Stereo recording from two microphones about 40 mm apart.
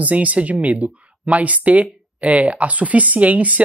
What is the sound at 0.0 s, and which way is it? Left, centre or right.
Speech, right.